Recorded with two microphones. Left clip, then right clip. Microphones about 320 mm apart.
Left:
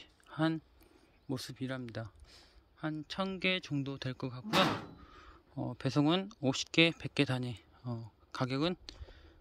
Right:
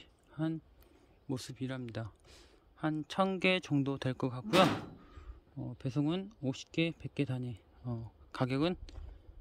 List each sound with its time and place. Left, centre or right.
0.0 s chewing: centre
1.3 s speech: centre